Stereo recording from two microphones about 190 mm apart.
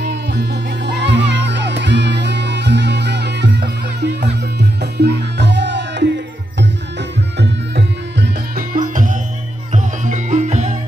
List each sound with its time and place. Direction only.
0.0 s music: 60° right (ahead or behind)
7.3 s music: 65° right (ahead or behind)
8.7 s music: 45° right (ahead or behind)